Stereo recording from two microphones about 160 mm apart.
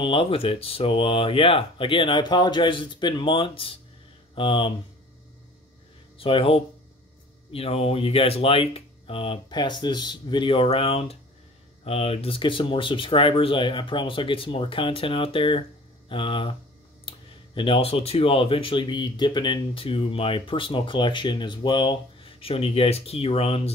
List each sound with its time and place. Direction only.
0.0 s speech: 35° left (ahead or behind)
6.1 s speech: 35° left (ahead or behind)
17.6 s speech: 35° left (ahead or behind)